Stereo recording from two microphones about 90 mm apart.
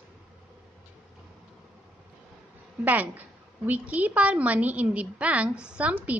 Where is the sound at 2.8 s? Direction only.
20° right (ahead or behind).